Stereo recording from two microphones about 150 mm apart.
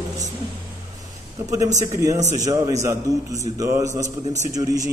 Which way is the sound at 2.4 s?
25° right (ahead or behind).